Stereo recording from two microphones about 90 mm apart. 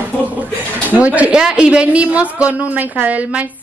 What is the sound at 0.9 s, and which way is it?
Speech, 15° right (ahead or behind).